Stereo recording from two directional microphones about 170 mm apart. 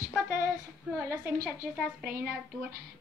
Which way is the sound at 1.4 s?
5° right (ahead or behind).